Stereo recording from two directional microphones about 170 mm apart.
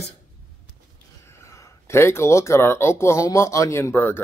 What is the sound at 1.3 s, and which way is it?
Speech, 15° left (ahead or behind).